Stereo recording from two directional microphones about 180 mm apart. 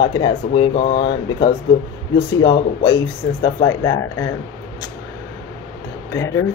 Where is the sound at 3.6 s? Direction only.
20° left (ahead or behind).